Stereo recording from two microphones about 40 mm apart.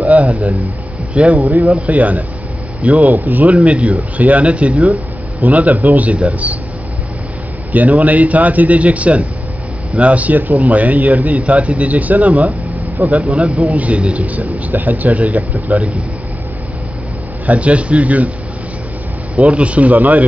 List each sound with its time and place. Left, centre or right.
0.0 s a man's voice: right
3.6 s speech: right
7.7 s speech: right
13.3 s speech: centre
13.7 s speech: right
17.5 s speech: right
19.3 s speech: right